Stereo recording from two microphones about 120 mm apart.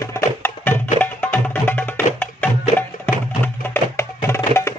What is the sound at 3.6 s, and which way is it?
Music, 20° left (ahead or behind).